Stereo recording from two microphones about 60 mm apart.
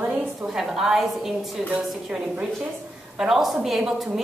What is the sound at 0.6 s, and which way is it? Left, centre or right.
Speech, centre.